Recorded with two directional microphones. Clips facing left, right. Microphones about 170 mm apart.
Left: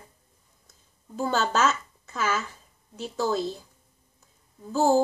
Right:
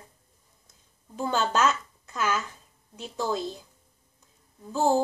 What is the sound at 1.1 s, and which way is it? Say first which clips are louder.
A woman's voice: left 1 dB; 5° left (ahead or behind).